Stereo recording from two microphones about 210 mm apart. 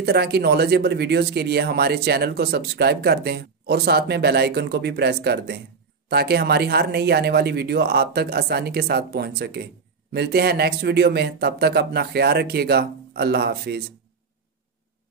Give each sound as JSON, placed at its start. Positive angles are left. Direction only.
{"t": 0.0, "sound": "speech", "side_deg": -50}